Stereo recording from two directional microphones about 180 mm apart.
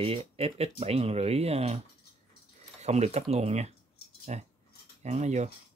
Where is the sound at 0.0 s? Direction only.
35° right (ahead or behind).